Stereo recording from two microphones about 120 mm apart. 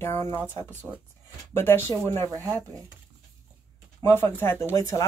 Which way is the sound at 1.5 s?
20° left (ahead or behind).